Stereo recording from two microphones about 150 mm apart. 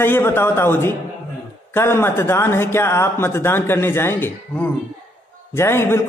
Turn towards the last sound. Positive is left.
turn(degrees=20)  # may be behind; listen again after turning